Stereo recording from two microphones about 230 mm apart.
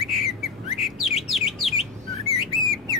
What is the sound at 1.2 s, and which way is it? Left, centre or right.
Chirp, centre.